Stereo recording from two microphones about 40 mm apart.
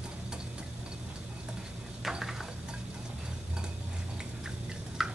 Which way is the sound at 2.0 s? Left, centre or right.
Centre.